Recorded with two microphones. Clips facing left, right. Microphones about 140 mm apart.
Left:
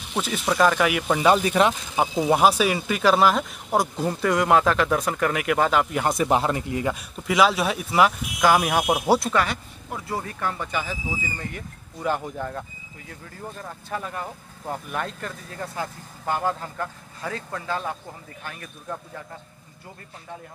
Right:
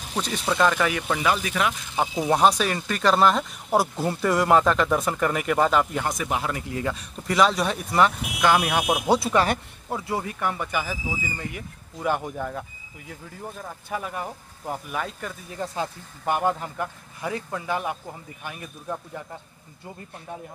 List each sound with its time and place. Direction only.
0.1 s speech: 5° left (ahead or behind)
1.2 s speech: 30° left (ahead or behind)
2.2 s speech: 5° left (ahead or behind)
6.0 s speech: 30° left (ahead or behind)
6.7 s speech: 15° left (ahead or behind)
7.2 s speech: 5° left (ahead or behind)
9.8 s speech: 20° right (ahead or behind)
15.5 s speech: 20° right (ahead or behind)